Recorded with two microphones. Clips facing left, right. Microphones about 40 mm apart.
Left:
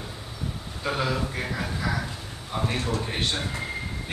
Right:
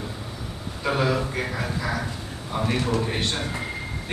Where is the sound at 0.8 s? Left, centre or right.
Centre.